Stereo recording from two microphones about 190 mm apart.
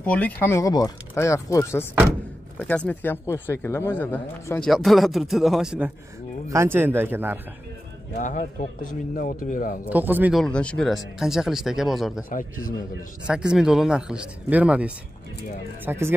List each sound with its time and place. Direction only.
0.0 s speech: 5° left (ahead or behind)
2.9 s speech: 10° left (ahead or behind); by 7.3 s 10° right (ahead or behind)
8.2 s a man's voice: 40° left (ahead or behind)
9.8 s speech: 10° right (ahead or behind)
10.4 s speech: 5° left (ahead or behind)
12.3 s a man's voice: 45° left (ahead or behind)
13.3 s speech: 5° right (ahead or behind)